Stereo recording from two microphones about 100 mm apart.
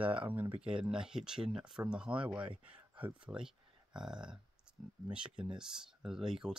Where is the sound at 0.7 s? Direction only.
10° right (ahead or behind).